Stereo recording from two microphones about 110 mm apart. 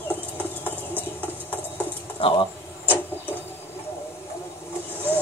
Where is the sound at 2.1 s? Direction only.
55° left (ahead or behind).